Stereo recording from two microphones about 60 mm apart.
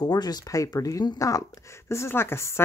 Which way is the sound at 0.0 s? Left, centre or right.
Left.